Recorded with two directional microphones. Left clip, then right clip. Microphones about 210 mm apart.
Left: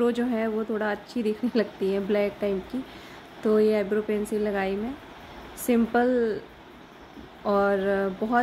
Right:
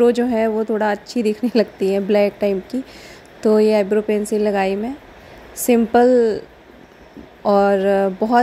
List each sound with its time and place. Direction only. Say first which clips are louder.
0.0 s a woman's voice: right 10 dB; 30° right (ahead or behind)
7.4 s a woman's voice: right 9 dB; 30° right (ahead or behind)